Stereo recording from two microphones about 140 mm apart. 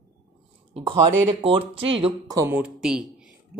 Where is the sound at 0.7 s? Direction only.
45° right (ahead or behind).